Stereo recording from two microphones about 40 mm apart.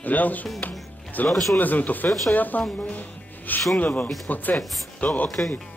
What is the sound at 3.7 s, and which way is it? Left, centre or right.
Speech, left.